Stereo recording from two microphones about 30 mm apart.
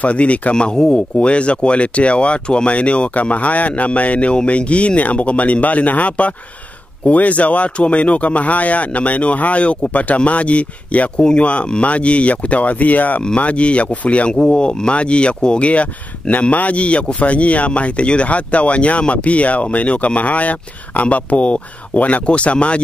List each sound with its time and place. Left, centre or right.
0.0 s a man's voice: left
0.7 s speech: left
1.2 s a man's voice: left
13.4 s a man's voice: left
14.3 s speech: left
15.7 s a man's voice: left